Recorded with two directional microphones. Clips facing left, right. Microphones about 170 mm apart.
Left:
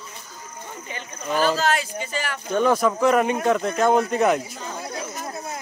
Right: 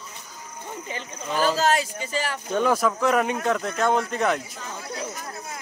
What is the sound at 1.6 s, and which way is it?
Speech, 35° right (ahead or behind).